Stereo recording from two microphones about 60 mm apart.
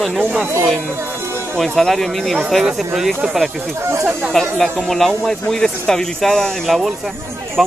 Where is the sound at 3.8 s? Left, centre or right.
Right.